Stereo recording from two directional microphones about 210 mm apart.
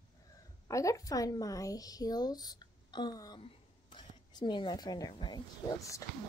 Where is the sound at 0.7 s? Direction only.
15° left (ahead or behind).